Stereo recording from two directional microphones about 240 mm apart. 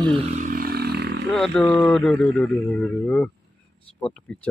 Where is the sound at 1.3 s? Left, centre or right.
Centre.